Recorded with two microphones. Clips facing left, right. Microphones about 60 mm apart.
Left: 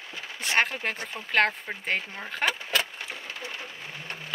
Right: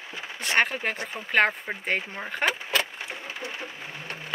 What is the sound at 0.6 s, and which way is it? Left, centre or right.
Speech, centre.